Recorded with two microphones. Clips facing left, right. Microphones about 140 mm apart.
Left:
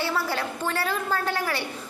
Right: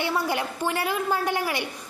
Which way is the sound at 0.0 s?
15° right (ahead or behind).